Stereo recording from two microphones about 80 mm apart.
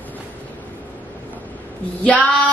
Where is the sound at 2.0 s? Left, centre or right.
Centre.